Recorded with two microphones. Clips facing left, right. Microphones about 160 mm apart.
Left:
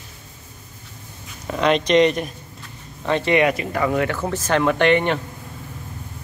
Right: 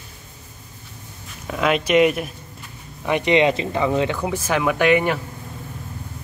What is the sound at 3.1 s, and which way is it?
Speech, 15° right (ahead or behind).